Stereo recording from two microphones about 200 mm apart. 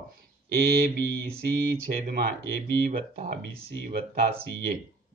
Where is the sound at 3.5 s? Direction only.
60° left (ahead or behind).